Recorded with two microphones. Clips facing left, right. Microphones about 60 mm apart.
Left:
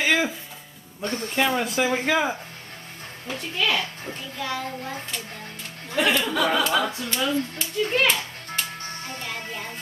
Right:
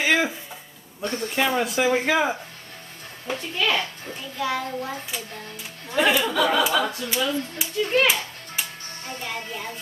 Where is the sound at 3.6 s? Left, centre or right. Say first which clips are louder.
Even; centre.